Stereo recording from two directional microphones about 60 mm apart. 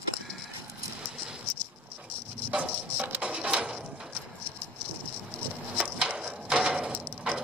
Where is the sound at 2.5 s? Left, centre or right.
Right.